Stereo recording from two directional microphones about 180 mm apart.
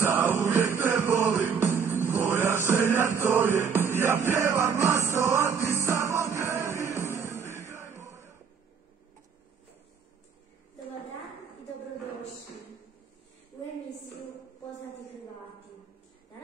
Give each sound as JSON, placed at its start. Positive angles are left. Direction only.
{"t": 0.0, "sound": "music", "side_deg": -15}